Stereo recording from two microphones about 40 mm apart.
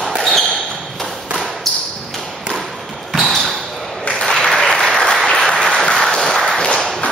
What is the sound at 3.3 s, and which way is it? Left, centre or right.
Basketball bounce, centre.